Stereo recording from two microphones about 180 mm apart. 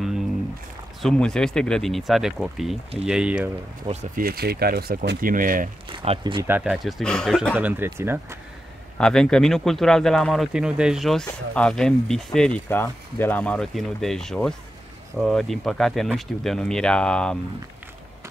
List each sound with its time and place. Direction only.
1.0 s speech: 5° left (ahead or behind)
3.8 s speech: 40° right (ahead or behind)
5.9 s speech: 25° right (ahead or behind)
6.4 s speech: 10° right (ahead or behind)
7.5 s speech: 10° right (ahead or behind)
8.9 s speech: 5° left (ahead or behind)